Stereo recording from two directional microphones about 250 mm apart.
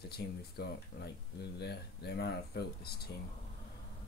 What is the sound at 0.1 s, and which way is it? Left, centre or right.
Speech, left.